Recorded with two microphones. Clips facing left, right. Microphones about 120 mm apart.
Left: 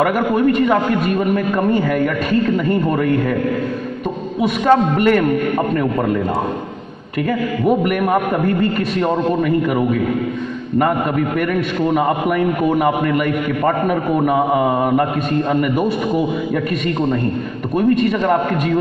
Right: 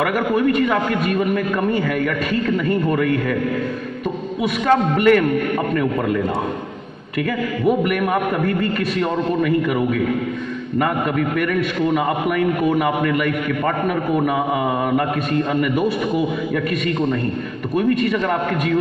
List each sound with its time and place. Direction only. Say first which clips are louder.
0.0 s a man's voice: left 3 dB; 25° left (ahead or behind)
4.4 s a man's voice: left 4 dB; 30° left (ahead or behind)
7.2 s a man's voice: left 2 dB; 25° left (ahead or behind)
11.3 s a man's voice: left 1 dB; 30° left (ahead or behind)
17.7 s a man's voice: left 3 dB; 30° left (ahead or behind)